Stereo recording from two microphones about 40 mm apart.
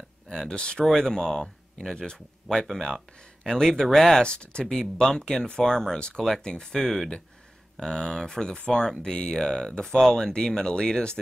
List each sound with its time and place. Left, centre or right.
0.3 s speech: centre
4.2 s speech: left
6.2 s speech: centre